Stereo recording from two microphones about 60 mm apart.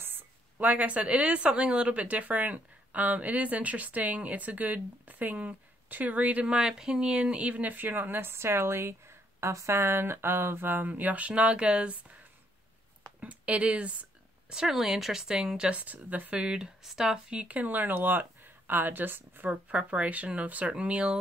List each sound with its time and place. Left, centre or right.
0.0 s speech: right
6.4 s speech: centre; by 10.9 s right
10.9 s speech: right
13.2 s speech: right
14.5 s speech: centre
15.8 s speech: right
16.3 s speech: centre
17.3 s speech: right